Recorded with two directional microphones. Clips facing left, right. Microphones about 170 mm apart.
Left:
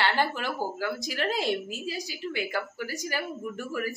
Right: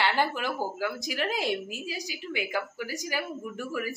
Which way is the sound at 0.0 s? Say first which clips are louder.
Even; 15° right (ahead or behind).